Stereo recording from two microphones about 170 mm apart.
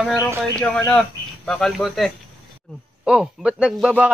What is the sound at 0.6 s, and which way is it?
Speech, 15° left (ahead or behind).